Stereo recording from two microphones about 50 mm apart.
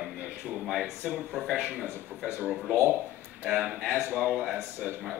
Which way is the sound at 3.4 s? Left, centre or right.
Right.